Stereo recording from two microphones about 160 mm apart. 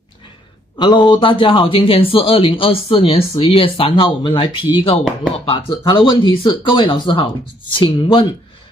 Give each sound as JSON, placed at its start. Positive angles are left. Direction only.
{"t": 0.7, "sound": "speech", "side_deg": 30}